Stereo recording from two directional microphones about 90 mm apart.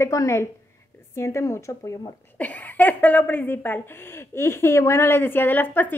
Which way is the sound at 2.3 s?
15° left (ahead or behind).